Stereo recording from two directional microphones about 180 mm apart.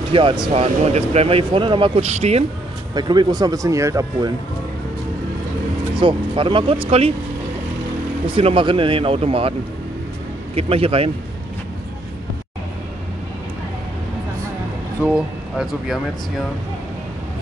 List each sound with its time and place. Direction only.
0.1 s speech: 25° right (ahead or behind)
2.9 s speech: 25° right (ahead or behind)
5.9 s speech: 30° right (ahead or behind)
8.3 s speech: 30° right (ahead or behind)
15.0 s speech: 5° right (ahead or behind)